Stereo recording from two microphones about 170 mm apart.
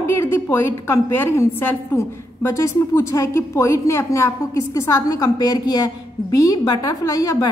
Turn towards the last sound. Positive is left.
turn(degrees=20)  # may be behind; listen again after turning